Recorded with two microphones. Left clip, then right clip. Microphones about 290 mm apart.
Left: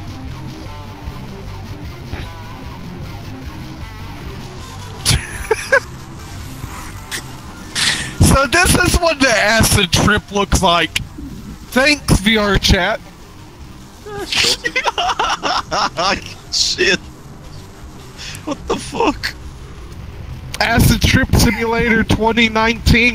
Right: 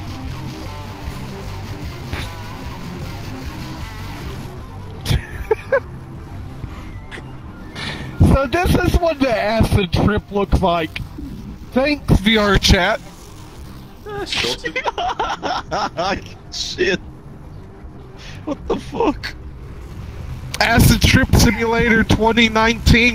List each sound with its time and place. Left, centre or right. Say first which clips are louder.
0.0 s music: right 1 dB; centre
5.0 s a sound: left 6 dB; left
7.7 s a man's voice: left 11 dB; left
12.2 s speech: left 1 dB; centre
14.0 s a sound: even; centre
14.3 s speech: left 6 dB; centre
18.2 s speech: left 2 dB; left
20.5 s speech: even; centre